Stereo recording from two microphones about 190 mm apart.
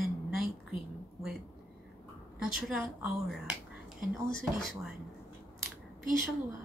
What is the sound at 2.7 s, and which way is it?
Speech, centre (ahead or behind).